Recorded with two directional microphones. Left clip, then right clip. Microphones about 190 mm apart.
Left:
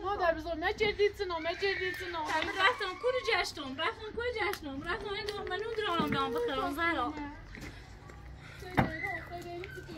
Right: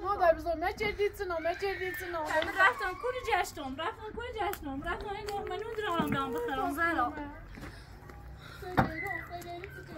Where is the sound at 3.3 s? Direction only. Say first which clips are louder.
Even; 70° right (ahead or behind); by 7.2 s 40° right (ahead or behind).